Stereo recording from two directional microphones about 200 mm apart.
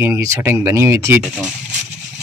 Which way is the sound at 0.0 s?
15° right (ahead or behind).